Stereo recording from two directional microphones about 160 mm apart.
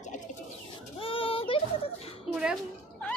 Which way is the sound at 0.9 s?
35° left (ahead or behind).